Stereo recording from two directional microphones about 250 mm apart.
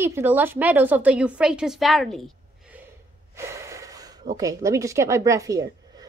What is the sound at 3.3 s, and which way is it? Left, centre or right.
Gasp, centre.